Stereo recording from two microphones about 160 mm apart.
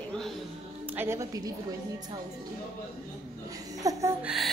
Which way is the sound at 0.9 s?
15° right (ahead or behind).